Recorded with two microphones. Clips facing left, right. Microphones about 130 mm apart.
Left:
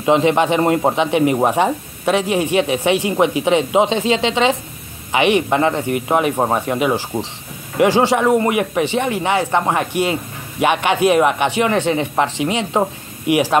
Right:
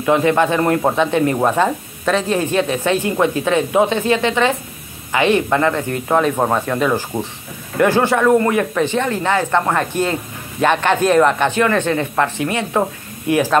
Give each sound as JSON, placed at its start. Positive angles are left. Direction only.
{"t": 0.0, "sound": "speech", "side_deg": 20}